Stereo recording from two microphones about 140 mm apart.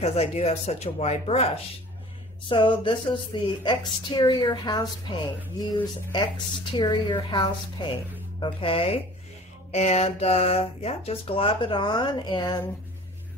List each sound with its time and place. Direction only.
0.0 s speech: 50° left (ahead or behind)
2.5 s a woman's voice: 35° left (ahead or behind)